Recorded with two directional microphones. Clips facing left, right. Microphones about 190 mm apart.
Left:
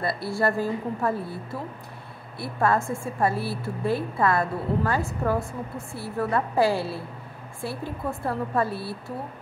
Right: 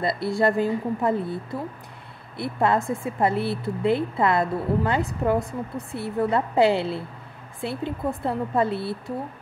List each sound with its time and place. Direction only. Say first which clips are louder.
0.0 s a woman's voice: right 3 dB; 20° right (ahead or behind)